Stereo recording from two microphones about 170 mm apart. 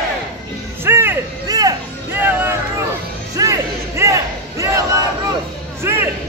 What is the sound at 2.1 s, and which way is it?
Vehicle, 10° right (ahead or behind).